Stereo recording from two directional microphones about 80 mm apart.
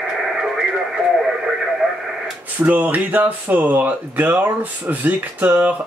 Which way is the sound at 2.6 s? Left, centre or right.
Right.